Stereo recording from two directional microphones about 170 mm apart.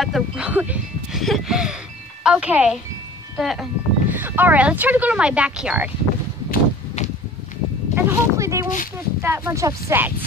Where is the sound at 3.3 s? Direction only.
Centre (ahead or behind).